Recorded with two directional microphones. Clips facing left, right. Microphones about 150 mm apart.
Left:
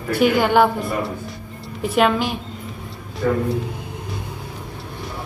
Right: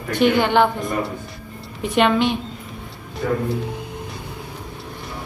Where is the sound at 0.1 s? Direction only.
5° left (ahead or behind).